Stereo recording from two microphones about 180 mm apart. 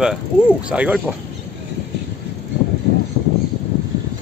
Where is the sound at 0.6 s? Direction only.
5° right (ahead or behind).